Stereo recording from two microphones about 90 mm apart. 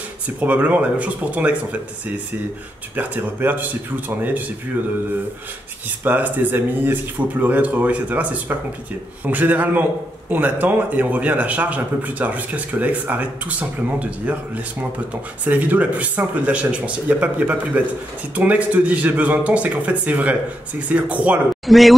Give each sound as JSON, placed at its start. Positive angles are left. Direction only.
{"t": 0.4, "sound": "speech", "side_deg": -15}
{"t": 3.0, "sound": "speech", "side_deg": -20}
{"t": 6.0, "sound": "speech", "side_deg": -20}
{"t": 21.6, "sound": "a man's voice", "side_deg": 0}